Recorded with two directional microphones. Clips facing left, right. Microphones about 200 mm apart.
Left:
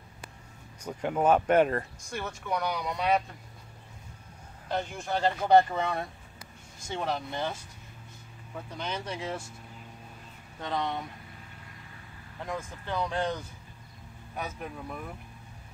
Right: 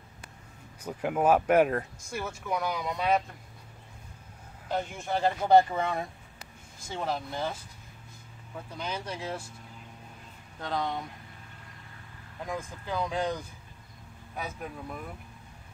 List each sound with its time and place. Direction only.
0.8 s speech: 5° right (ahead or behind)
4.6 s speech: 5° right (ahead or behind)
8.7 s speech: 5° right (ahead or behind)
10.6 s speech: 5° right (ahead or behind)
12.4 s speech: 10° right (ahead or behind)